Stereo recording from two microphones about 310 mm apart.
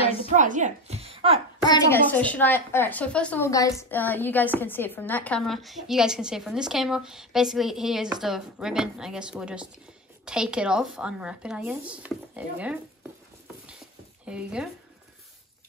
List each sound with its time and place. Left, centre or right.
0.4 s speech: right
1.6 s a woman's voice: centre
14.2 s a woman's voice: centre